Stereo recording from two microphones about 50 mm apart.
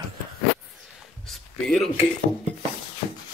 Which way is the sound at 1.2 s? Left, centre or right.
Centre.